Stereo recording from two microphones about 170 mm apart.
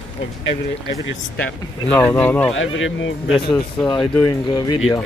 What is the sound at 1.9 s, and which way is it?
Speech, 10° left (ahead or behind).